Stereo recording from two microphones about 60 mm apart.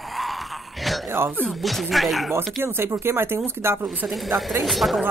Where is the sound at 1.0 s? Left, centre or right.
Right.